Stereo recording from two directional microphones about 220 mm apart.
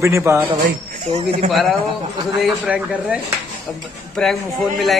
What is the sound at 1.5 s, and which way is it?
A man's voice, centre (ahead or behind).